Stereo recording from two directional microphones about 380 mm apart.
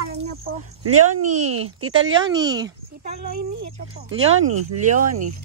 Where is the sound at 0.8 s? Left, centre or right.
Right.